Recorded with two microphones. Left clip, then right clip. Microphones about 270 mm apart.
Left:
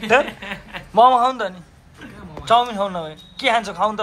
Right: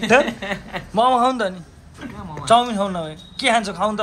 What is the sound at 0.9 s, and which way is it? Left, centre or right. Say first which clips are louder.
A man's voice: left 3 dB; centre.